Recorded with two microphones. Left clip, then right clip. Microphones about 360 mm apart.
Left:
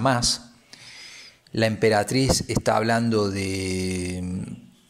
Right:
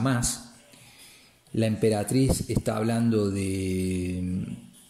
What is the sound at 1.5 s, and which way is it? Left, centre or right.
Speech, centre.